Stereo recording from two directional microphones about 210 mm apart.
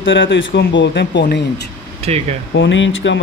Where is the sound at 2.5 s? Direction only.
65° left (ahead or behind).